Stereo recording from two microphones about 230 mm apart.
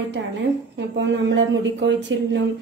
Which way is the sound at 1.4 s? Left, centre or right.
Right.